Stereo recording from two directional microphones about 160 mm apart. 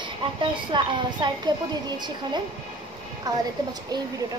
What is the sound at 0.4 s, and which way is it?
A woman's voice, 30° right (ahead or behind).